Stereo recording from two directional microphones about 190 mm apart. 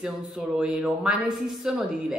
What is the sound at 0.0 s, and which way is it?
Speech, centre (ahead or behind).